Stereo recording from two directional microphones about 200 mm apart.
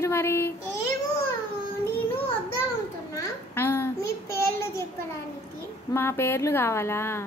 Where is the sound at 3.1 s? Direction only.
10° left (ahead or behind).